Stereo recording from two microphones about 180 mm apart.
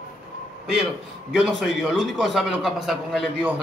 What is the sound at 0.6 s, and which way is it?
A man's voice, centre (ahead or behind).